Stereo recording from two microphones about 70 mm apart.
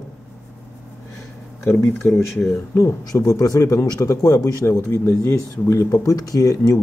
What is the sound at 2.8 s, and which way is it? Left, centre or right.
Speech, left.